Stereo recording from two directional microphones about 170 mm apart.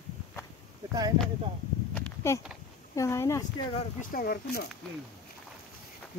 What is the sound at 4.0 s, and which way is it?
Speech, 60° left (ahead or behind).